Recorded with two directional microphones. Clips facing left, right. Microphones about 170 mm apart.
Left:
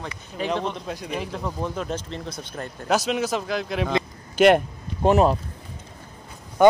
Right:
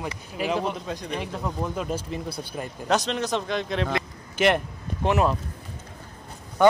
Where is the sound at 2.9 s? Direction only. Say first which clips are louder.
Left 2 dB; 5° left (ahead or behind).